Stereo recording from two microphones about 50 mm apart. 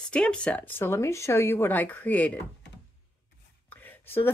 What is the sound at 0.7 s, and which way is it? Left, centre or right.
Speech, left.